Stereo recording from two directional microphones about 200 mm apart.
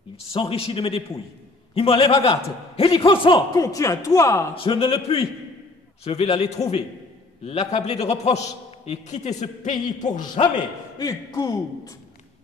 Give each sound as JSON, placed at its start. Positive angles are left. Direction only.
{"t": 0.3, "sound": "a man's voice", "side_deg": 30}
{"t": 4.7, "sound": "a man's voice", "side_deg": 30}
{"t": 9.8, "sound": "a man's voice", "side_deg": 20}
{"t": 10.4, "sound": "a man's voice", "side_deg": 35}
{"t": 11.0, "sound": "speech", "side_deg": 15}